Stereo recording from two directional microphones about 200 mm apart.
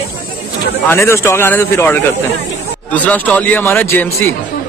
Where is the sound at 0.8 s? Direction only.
10° left (ahead or behind).